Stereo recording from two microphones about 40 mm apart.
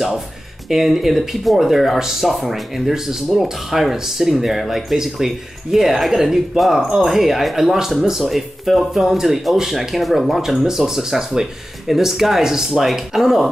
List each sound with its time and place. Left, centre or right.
0.7 s speech: centre